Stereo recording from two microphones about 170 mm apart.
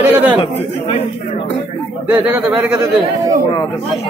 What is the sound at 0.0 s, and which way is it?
Speech, 10° right (ahead or behind).